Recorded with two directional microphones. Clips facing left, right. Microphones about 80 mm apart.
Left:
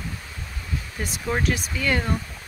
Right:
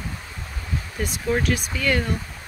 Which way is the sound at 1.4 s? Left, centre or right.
Left.